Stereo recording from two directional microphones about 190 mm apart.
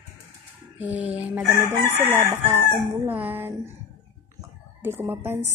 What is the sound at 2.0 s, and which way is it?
Chicken, 25° right (ahead or behind).